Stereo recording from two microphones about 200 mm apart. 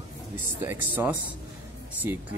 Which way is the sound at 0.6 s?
10° right (ahead or behind).